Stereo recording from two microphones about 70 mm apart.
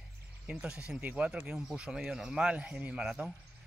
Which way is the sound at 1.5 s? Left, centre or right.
Centre.